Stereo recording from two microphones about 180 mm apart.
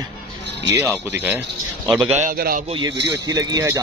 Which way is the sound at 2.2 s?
55° right (ahead or behind).